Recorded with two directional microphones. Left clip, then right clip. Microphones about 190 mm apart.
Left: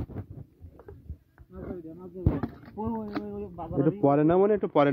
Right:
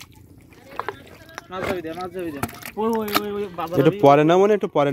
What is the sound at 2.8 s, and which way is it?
Speech, 5° right (ahead or behind).